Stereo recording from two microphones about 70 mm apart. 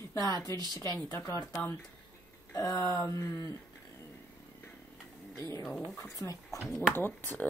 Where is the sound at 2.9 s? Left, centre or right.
Left.